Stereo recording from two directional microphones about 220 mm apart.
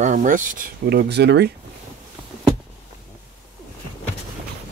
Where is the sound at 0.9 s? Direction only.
50° right (ahead or behind).